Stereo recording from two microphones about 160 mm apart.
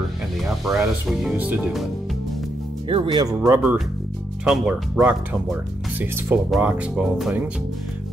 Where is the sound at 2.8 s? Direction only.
35° right (ahead or behind).